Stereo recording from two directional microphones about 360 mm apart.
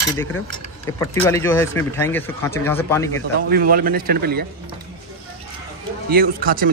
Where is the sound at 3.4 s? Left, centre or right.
Right.